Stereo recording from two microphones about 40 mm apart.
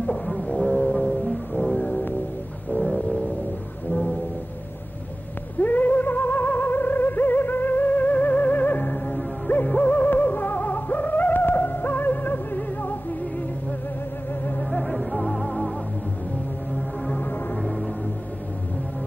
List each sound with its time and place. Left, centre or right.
0.0 s music: centre
3.9 s music: left
5.6 s music: left
14.7 s music: centre